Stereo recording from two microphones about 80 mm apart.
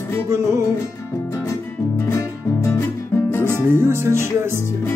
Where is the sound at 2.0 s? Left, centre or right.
Left.